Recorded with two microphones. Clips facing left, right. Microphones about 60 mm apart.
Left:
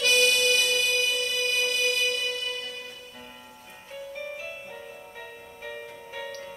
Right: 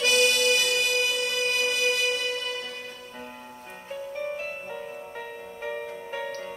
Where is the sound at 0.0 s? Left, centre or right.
Right.